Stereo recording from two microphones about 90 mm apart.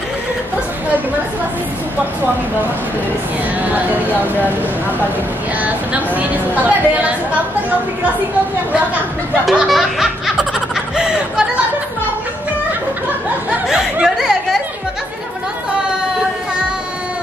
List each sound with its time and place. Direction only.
6.1 s a woman's voice: 20° right (ahead or behind)
9.5 s music: centre (ahead or behind)
11.0 s a sound: 10° right (ahead or behind)
13.5 s speech: 10° right (ahead or behind)